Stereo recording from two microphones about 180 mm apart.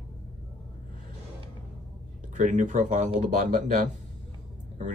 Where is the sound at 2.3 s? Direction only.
45° right (ahead or behind).